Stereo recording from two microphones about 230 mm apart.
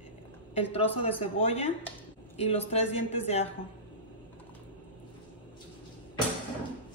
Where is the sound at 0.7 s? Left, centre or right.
Left.